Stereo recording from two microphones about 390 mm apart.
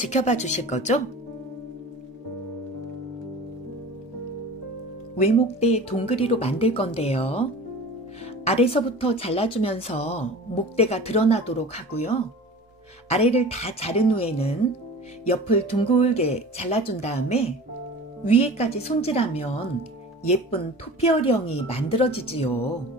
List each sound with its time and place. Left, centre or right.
0.0 s speech: centre
5.1 s speech: centre
8.5 s speech: centre
21.1 s speech: centre